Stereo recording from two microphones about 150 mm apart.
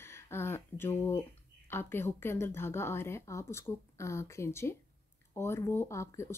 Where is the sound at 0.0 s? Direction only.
15° left (ahead or behind).